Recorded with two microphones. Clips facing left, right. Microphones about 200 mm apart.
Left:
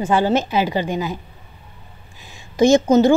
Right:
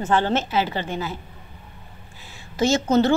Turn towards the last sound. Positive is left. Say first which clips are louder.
# left 6 dB
turn(degrees=15)  # may be behind; listen again after turning